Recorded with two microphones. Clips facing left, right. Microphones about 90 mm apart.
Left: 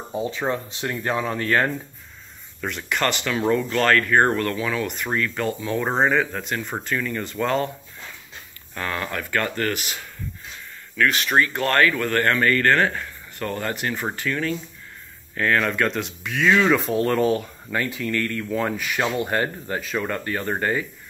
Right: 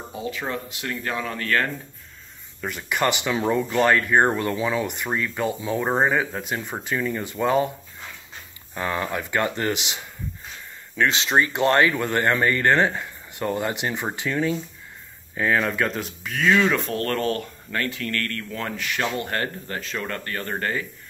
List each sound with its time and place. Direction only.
0.1 s speech: 25° left (ahead or behind)
2.6 s speech: 10° right (ahead or behind)
8.7 s speech: 15° right (ahead or behind); by 20.8 s 15° left (ahead or behind)